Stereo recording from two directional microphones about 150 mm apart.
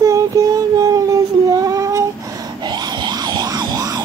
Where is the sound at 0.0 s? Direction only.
20° right (ahead or behind).